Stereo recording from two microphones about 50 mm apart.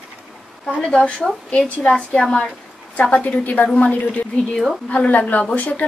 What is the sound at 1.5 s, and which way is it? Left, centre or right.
A woman's voice, left.